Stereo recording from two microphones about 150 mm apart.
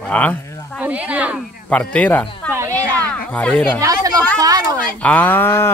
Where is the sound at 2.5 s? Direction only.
15° right (ahead or behind).